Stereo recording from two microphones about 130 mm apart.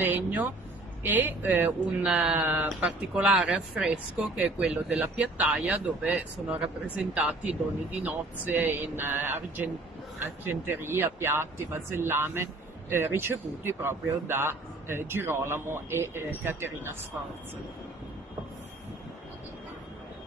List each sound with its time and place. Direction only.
0.0 s speech: 15° right (ahead or behind)